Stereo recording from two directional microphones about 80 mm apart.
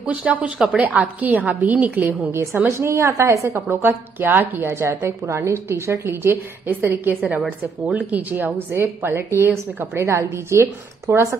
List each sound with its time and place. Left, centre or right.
0.0 s speech: centre
0.6 s speech: centre
0.8 s a woman's voice: centre